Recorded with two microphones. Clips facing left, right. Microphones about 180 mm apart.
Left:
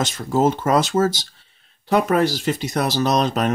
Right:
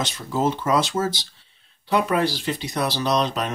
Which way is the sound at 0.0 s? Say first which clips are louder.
Left 5 dB; 45° left (ahead or behind).